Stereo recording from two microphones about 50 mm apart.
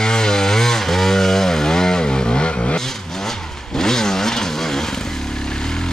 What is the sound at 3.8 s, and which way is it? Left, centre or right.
Vehicle, centre.